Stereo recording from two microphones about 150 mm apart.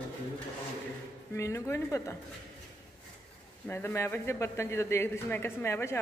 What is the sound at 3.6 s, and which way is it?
A man's voice, 15° left (ahead or behind).